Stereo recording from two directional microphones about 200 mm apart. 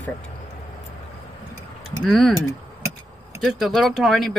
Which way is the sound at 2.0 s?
Centre (ahead or behind).